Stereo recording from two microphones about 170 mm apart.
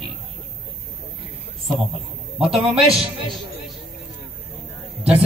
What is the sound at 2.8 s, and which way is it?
Speech, 35° right (ahead or behind).